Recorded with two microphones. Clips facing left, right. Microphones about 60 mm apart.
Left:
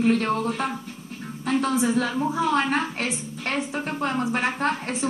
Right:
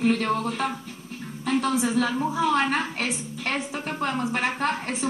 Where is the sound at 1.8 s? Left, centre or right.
Left.